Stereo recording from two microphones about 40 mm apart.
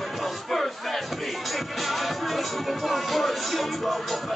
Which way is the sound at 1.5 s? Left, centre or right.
Centre.